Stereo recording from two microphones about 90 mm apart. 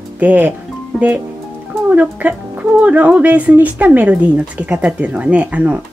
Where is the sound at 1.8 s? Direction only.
15° right (ahead or behind).